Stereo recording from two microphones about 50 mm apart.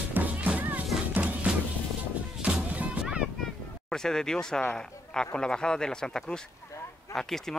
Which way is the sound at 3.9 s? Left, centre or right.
Centre.